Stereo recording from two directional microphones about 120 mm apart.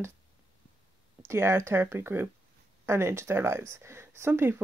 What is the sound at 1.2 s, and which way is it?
Speech, 20° right (ahead or behind).